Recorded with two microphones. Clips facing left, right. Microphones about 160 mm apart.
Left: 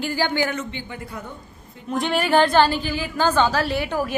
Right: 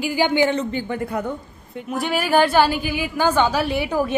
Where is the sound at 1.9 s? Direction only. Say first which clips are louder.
Even; 5° right (ahead or behind).